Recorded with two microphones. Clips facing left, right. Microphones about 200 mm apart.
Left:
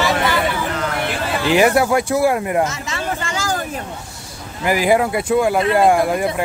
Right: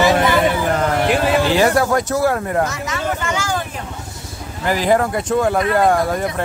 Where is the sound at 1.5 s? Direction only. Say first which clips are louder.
Left 1 dB; 10° left (ahead or behind).